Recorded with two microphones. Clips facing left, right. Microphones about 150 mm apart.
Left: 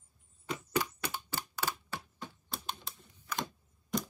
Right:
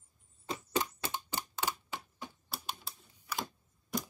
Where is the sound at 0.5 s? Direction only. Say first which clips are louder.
Left 1 dB; 20° right (ahead or behind).